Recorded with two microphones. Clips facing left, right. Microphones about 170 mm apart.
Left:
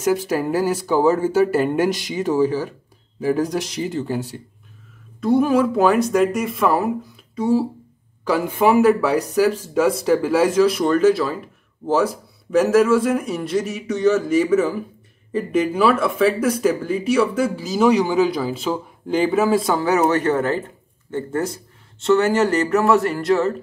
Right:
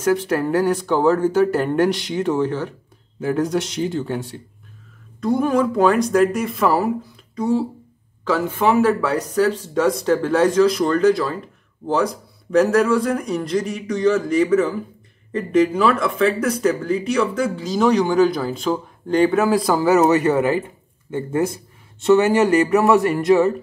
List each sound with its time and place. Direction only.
0.0 s speech: 5° left (ahead or behind); by 23.5 s 15° right (ahead or behind)